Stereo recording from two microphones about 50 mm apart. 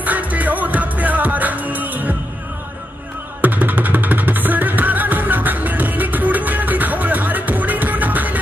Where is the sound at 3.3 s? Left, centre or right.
Right.